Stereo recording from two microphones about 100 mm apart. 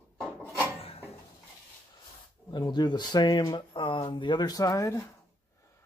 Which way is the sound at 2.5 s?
45° left (ahead or behind).